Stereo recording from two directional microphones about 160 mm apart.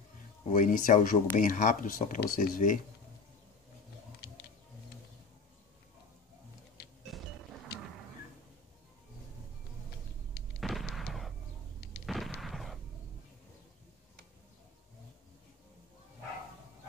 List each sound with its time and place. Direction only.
0.5 s speech: 55° left (ahead or behind)
7.1 s music: centre (ahead or behind)
10.6 s a sound: centre (ahead or behind)
12.1 s gunshot: centre (ahead or behind)